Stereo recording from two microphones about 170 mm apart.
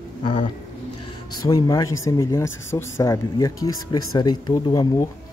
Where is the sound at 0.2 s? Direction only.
30° left (ahead or behind).